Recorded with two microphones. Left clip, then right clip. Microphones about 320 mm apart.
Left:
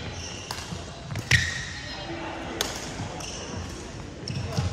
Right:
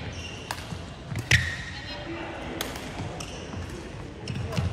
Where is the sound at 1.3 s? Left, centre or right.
Centre.